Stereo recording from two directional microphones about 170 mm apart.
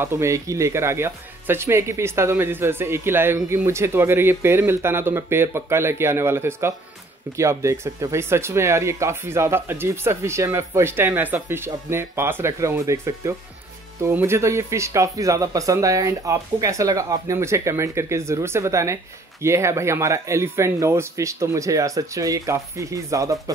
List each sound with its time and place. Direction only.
0.0 s speech: 15° right (ahead or behind)